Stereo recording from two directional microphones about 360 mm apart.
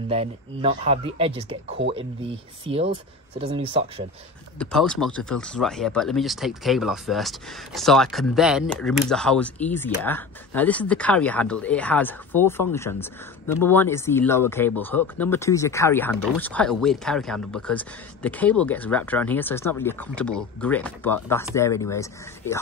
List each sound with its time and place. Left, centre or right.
0.1 s speech: centre
4.6 s speech: centre